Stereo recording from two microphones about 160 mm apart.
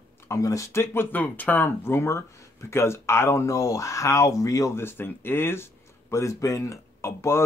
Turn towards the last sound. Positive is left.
turn(degrees=15)  # may be behind; listen again after turning